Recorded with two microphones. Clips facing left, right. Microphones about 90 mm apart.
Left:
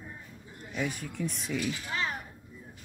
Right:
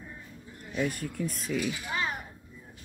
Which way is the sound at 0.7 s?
Centre (ahead or behind).